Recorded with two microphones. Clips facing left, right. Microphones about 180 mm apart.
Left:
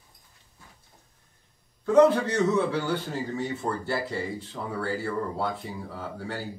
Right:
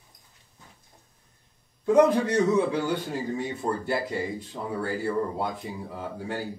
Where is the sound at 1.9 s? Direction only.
15° right (ahead or behind).